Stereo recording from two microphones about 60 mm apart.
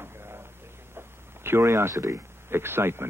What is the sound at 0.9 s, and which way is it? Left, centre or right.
Speech, right.